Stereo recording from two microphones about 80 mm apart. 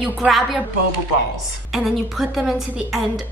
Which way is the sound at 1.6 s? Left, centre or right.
Centre.